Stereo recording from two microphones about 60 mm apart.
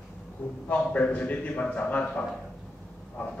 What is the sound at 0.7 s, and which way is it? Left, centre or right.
A man's voice, left.